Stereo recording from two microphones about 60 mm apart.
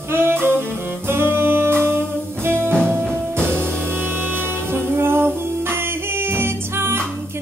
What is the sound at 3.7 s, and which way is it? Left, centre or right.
Music, right.